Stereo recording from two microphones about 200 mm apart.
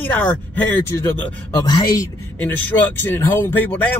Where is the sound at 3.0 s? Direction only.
10° left (ahead or behind).